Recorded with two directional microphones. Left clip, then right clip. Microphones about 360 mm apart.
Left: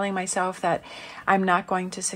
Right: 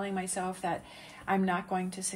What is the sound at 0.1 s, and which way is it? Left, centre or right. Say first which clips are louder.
Speech: left 9 dB; centre.